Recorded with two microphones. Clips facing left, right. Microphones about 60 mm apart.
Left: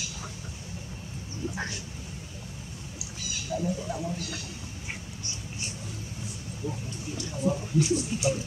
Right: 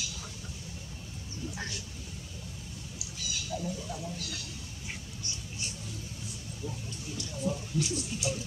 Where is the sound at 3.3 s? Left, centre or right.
Left.